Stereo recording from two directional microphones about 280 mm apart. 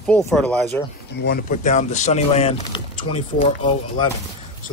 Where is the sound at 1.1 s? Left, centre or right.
Left.